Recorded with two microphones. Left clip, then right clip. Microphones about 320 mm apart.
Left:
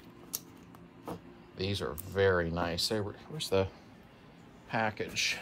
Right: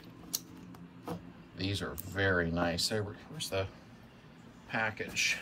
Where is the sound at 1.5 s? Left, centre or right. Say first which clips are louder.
Left 2 dB; left.